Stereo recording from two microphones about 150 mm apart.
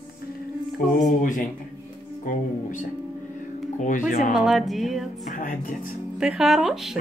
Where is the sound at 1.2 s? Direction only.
60° left (ahead or behind).